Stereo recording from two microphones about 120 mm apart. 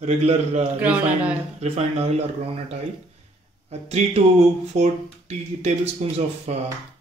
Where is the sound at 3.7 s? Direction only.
65° right (ahead or behind).